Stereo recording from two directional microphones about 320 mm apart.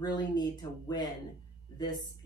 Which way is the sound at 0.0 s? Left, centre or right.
Centre.